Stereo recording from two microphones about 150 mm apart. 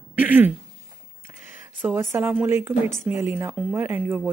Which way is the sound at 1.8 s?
15° right (ahead or behind).